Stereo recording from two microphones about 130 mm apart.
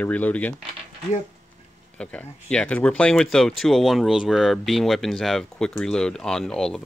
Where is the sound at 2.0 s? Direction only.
10° left (ahead or behind).